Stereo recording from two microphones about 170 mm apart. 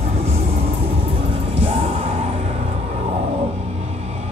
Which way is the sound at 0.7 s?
35° right (ahead or behind).